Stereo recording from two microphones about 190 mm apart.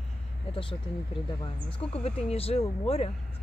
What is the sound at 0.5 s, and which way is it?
Speech, 25° left (ahead or behind).